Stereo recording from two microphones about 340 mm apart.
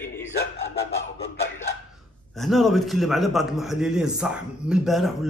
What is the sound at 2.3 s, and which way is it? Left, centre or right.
A man's voice, centre.